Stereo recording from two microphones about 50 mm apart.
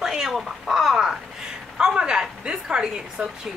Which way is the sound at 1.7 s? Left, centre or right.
Centre.